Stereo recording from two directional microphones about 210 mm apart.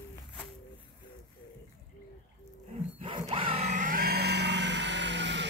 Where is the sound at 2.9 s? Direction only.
25° right (ahead or behind); by 5.4 s 55° right (ahead or behind).